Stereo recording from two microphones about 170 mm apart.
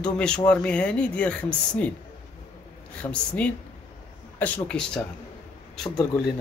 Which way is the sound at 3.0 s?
5° left (ahead or behind).